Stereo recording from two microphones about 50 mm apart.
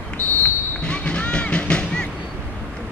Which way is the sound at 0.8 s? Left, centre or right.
Left.